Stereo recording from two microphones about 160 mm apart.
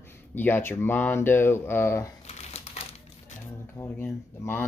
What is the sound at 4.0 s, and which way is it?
Speech, 15° left (ahead or behind).